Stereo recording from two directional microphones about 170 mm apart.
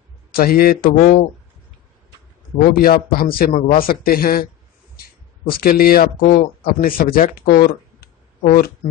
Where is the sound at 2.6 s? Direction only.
60° left (ahead or behind).